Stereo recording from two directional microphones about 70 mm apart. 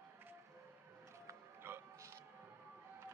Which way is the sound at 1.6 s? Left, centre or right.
Right.